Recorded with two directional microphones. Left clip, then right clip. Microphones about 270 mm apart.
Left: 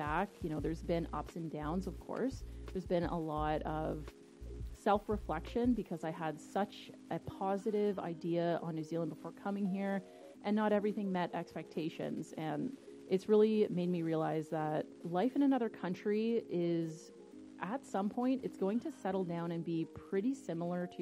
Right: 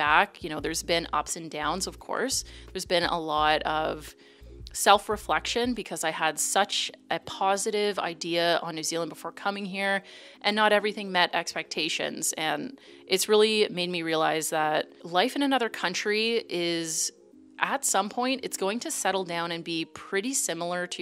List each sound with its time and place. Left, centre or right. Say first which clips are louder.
0.0 s a woman's voice: right 14 dB; centre
5.0 s a woman's voice: right 12 dB; centre